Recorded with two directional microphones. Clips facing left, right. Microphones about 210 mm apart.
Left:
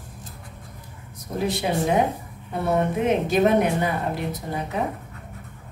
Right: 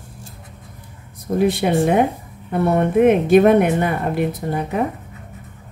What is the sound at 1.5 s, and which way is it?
A woman's voice, 55° right (ahead or behind).